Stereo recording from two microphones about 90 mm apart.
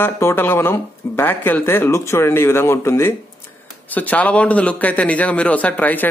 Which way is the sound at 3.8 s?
20° left (ahead or behind).